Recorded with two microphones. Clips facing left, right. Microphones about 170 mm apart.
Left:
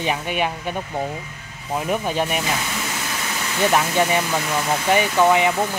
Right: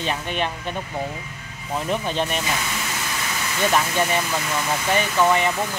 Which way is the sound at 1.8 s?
10° left (ahead or behind).